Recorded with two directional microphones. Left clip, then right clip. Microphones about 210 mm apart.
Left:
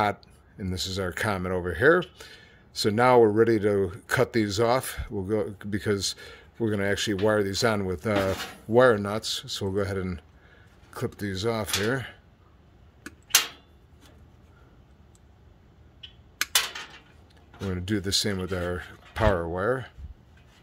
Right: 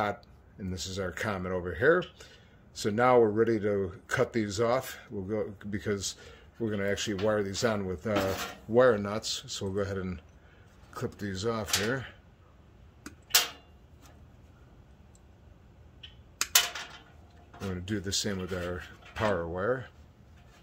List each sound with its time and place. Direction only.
0.0 s speech: 40° left (ahead or behind)
16.0 s a sound: 50° left (ahead or behind)
17.6 s speech: 35° left (ahead or behind)